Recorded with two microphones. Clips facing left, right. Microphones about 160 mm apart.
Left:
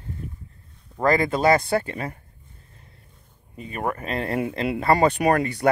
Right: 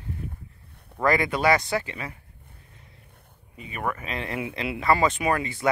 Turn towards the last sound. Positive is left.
turn(degrees=55)  # may be behind; listen again after turning